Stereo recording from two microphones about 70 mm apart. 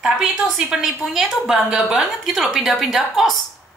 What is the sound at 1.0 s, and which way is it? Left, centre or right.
A woman's voice, centre.